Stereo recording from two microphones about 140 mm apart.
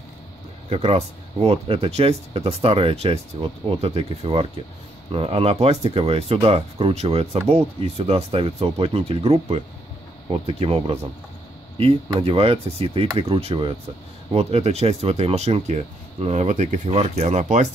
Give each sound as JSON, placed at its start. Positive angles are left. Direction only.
{"t": 0.7, "sound": "speech", "side_deg": -45}
{"t": 12.2, "sound": "speech", "side_deg": -45}